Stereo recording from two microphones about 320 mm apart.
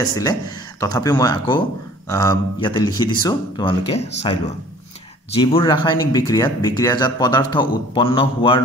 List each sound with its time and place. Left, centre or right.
0.1 s speech: centre